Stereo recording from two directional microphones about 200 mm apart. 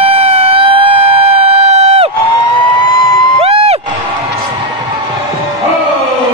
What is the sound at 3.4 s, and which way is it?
Cheering, 30° right (ahead or behind).